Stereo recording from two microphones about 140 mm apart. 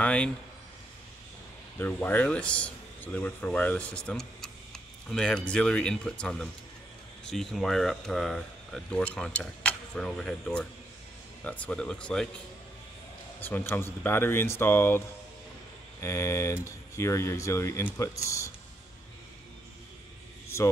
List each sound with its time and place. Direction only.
0.0 s a sound: 10° left (ahead or behind)
1.8 s speech: 15° left (ahead or behind)
13.4 s speech: 15° left (ahead or behind)